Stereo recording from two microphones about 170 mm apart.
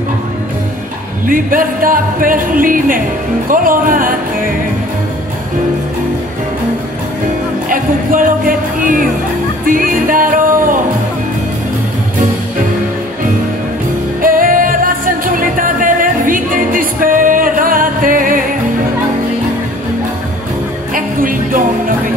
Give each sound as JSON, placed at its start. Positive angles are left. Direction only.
{"t": 1.2, "sound": "speech", "side_deg": -55}
{"t": 7.7, "sound": "music", "side_deg": -55}
{"t": 14.2, "sound": "music", "side_deg": -55}
{"t": 20.9, "sound": "music", "side_deg": -55}